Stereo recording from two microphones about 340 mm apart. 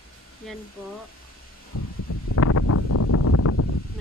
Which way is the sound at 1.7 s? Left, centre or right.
Left.